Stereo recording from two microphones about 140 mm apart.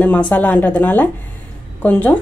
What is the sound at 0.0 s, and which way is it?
Speech, 10° left (ahead or behind).